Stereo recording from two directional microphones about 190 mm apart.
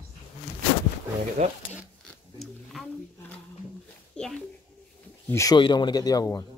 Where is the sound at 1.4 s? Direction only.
35° right (ahead or behind).